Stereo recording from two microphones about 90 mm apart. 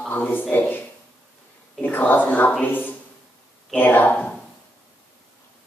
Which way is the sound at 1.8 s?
20° left (ahead or behind).